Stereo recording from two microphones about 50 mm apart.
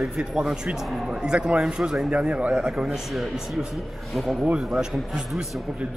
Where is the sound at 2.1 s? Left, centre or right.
Right.